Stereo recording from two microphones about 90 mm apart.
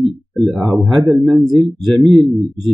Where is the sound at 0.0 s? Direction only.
Centre (ahead or behind).